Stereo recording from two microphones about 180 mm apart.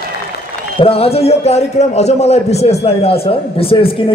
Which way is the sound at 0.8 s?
30° left (ahead or behind).